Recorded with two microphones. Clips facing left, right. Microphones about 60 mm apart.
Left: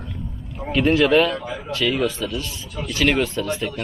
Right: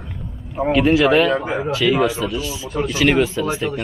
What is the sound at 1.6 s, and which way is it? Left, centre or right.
Speech, centre.